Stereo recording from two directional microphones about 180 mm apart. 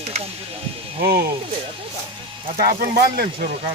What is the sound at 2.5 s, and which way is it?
Speech, 55° right (ahead or behind).